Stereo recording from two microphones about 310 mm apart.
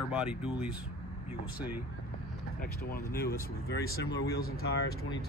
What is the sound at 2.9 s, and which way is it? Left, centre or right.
Speech, left.